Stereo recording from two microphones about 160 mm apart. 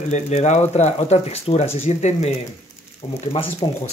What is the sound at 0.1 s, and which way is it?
Speech, 45° left (ahead or behind).